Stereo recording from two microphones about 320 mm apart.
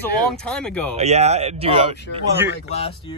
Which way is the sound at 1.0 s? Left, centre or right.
Centre.